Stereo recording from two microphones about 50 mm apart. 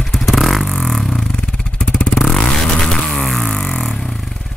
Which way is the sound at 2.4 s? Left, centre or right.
Centre.